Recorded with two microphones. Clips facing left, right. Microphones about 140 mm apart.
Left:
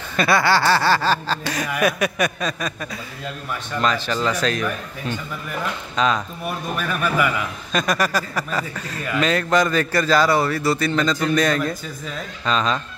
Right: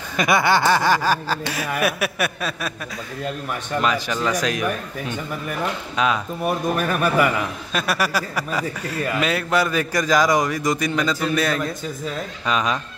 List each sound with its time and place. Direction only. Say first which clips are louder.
0.1 s speech: even; 15° right (ahead or behind)
3.8 s speech: left 2 dB; 10° right (ahead or behind)
6.4 s a man's voice: right 5 dB; 40° right (ahead or behind)
7.7 s speech: left 2 dB; 5° right (ahead or behind)